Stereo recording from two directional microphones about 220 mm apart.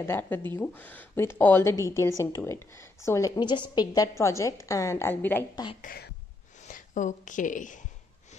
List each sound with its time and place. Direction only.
0.0 s speech: 10° left (ahead or behind)
5.8 s a woman's voice: 40° left (ahead or behind)